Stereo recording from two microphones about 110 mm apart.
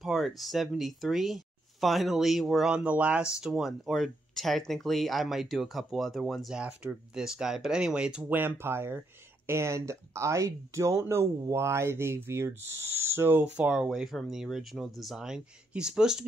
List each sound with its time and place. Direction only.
0.0 s speech: centre (ahead or behind)